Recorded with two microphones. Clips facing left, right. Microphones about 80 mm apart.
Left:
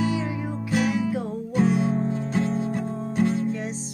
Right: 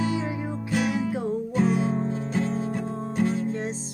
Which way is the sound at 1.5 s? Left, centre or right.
Centre.